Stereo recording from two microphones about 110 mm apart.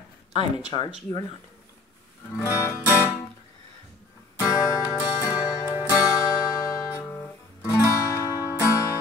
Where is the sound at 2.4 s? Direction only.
25° left (ahead or behind).